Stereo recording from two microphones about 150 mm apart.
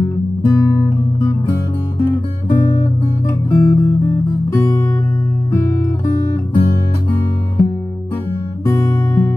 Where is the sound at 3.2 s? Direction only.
20° left (ahead or behind).